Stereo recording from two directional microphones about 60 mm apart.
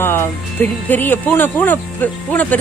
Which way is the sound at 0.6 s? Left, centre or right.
Left.